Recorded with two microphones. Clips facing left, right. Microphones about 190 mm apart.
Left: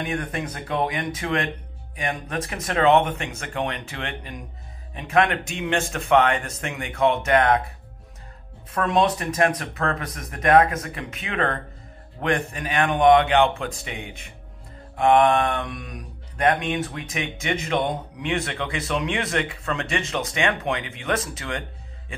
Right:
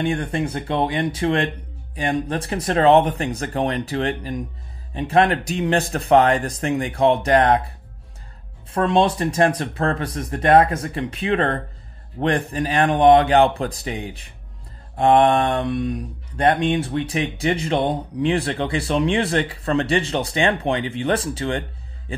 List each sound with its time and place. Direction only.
0.0 s speech: 30° right (ahead or behind)
8.7 s speech: 30° right (ahead or behind)